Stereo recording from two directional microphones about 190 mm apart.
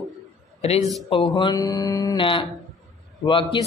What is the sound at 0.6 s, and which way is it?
A man's voice, 35° left (ahead or behind).